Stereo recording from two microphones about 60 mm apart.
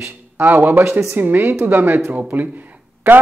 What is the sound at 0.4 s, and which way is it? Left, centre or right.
A man's voice, right.